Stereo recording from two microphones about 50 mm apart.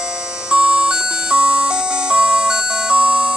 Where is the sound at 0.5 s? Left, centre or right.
Centre.